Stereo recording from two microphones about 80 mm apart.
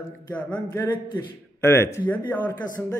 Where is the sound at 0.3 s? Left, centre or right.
Centre.